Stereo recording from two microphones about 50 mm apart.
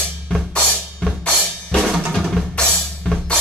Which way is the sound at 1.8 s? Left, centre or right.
Centre.